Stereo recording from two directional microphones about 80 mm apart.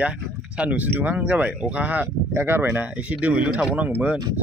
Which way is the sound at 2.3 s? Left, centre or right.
Right.